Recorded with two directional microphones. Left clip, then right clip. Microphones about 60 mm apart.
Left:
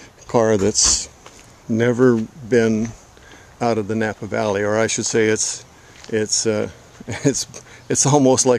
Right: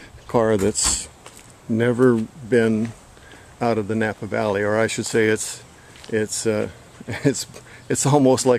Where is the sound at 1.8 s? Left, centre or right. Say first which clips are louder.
Left 2 dB; left.